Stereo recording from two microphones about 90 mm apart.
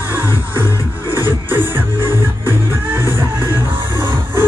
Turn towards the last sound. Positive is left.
turn(degrees=-25)  # may be behind; listen again after turning